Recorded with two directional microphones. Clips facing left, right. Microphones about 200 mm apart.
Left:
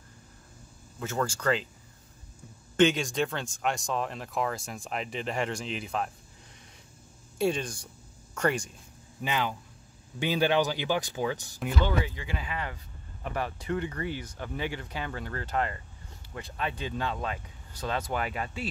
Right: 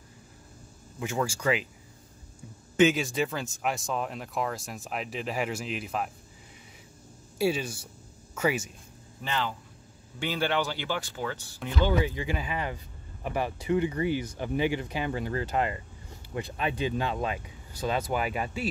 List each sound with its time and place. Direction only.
0.9 s speech: 10° right (ahead or behind)
2.8 s speech: 5° right (ahead or behind)
7.3 s speech: 5° right (ahead or behind)
9.2 s speech: 15° left (ahead or behind)
11.6 s speech: 5° left (ahead or behind)
12.2 s speech: 15° right (ahead or behind)